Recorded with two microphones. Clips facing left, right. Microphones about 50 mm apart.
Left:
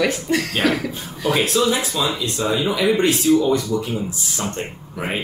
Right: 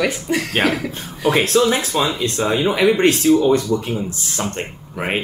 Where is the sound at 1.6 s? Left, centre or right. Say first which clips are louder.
Right 2 dB; right.